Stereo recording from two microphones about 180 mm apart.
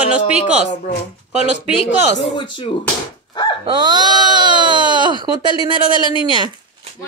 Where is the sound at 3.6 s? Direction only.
25° right (ahead or behind).